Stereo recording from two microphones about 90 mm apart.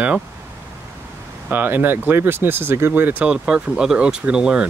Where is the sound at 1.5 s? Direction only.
20° right (ahead or behind).